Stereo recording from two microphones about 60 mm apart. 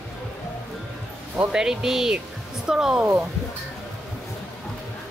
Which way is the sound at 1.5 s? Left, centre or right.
Centre.